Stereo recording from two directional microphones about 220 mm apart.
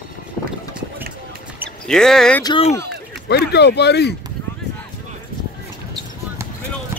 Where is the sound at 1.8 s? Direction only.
5° left (ahead or behind).